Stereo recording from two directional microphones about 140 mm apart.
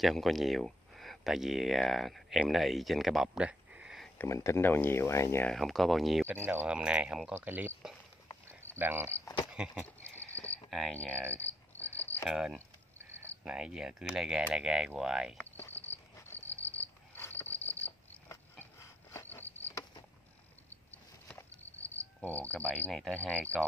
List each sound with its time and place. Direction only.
0.0 s speech: centre (ahead or behind)
4.2 s speech: 20° left (ahead or behind)
5.5 s speech: centre (ahead or behind)
6.2 s speech: 15° right (ahead or behind)
9.5 s a sound: 5° right (ahead or behind)
10.7 s speech: 5° left (ahead or behind)
12.0 s cricket: 15° left (ahead or behind)
12.3 s speech: 5° right (ahead or behind)
15.3 s cricket: 15° left (ahead or behind)
21.7 s cricket: 15° left (ahead or behind)